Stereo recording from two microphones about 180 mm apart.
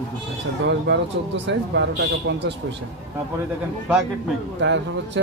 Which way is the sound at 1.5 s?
80° right.